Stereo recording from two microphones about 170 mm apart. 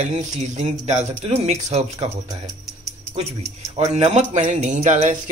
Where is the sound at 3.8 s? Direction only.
40° right (ahead or behind).